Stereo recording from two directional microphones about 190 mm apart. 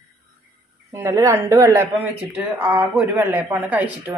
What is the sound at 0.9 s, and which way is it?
A man's voice, 15° right (ahead or behind).